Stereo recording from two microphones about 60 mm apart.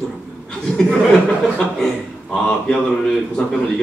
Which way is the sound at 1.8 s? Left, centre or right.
Centre.